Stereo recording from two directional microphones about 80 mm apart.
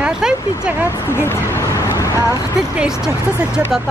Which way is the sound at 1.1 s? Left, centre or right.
Left.